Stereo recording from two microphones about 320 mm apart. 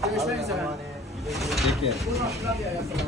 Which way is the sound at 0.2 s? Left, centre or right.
Centre.